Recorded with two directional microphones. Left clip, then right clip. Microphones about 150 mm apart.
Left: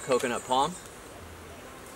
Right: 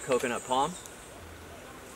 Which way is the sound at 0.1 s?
15° left (ahead or behind).